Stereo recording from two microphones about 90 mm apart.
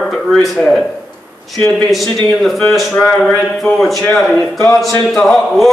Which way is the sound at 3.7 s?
Centre (ahead or behind).